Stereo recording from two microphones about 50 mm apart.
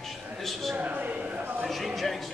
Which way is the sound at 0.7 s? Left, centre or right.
Right.